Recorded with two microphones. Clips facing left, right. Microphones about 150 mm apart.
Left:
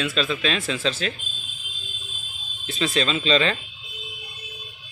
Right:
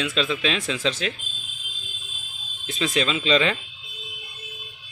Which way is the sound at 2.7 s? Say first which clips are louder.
Even; 10° right (ahead or behind).